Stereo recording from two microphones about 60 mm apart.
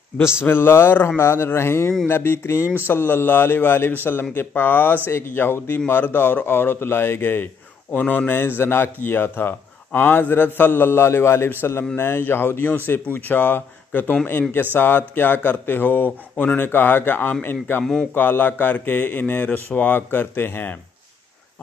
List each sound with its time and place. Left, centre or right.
0.4 s a man's voice: left
8.0 s speech: centre
8.3 s a man's voice: left